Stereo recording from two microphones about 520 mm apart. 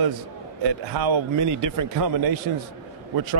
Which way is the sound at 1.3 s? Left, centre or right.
Right.